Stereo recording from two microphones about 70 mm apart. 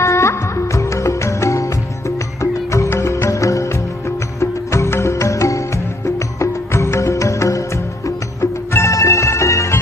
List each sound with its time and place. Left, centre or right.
0.0 s music: left